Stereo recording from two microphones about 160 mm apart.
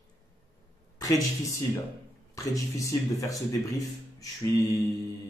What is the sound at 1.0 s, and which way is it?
A man's voice, 20° left (ahead or behind).